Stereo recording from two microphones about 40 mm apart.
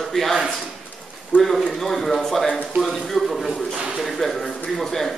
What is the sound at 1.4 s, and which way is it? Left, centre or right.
A man's voice, centre.